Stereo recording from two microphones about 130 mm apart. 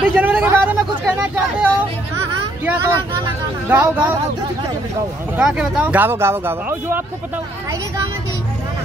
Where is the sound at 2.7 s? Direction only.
25° right (ahead or behind).